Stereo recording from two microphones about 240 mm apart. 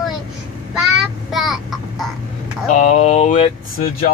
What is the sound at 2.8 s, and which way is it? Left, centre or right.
Mantra, left.